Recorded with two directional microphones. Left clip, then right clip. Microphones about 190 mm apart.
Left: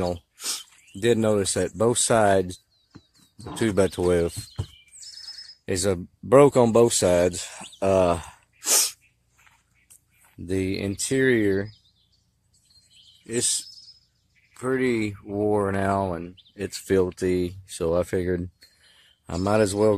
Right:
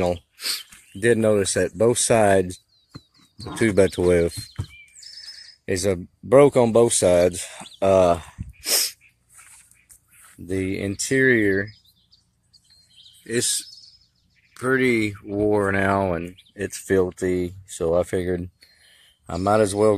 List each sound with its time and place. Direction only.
0.5 s speech: centre (ahead or behind); by 9.0 s 20° left (ahead or behind)
10.4 s speech: 15° left (ahead or behind)
13.2 s speech: centre (ahead or behind)
16.7 s speech: 15° left (ahead or behind)